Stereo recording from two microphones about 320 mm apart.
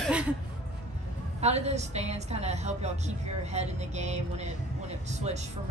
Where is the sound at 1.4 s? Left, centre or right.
Centre.